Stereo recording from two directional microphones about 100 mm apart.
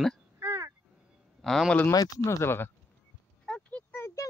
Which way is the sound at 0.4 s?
25° right (ahead or behind).